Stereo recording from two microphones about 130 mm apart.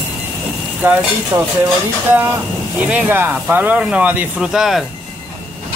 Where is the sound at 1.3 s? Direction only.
25° right (ahead or behind).